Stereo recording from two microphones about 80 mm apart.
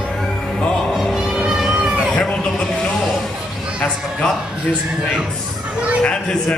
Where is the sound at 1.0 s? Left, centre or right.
Centre.